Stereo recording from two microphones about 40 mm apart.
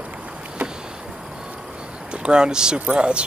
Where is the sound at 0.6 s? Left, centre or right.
Centre.